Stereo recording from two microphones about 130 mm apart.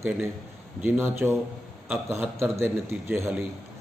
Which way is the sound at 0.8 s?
15° right (ahead or behind).